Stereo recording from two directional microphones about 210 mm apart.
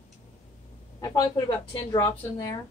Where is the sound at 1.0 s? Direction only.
15° left (ahead or behind).